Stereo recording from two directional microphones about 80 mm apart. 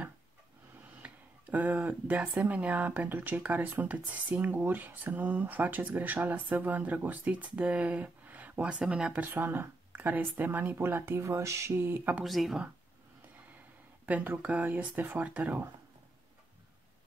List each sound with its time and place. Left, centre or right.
1.0 s a sound: centre
2.4 s speech: centre
9.2 s speech: right
12.3 s speech: centre
14.0 s speech: right